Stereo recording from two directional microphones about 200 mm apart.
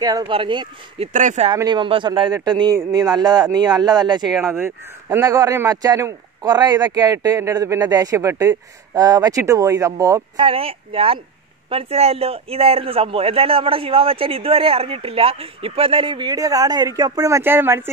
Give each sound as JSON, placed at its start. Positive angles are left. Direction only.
{"t": 0.0, "sound": "a man's voice", "side_deg": -25}
{"t": 1.5, "sound": "a man's voice", "side_deg": -20}
{"t": 4.3, "sound": "speech", "side_deg": 0}
{"t": 4.6, "sound": "a man's voice", "side_deg": -10}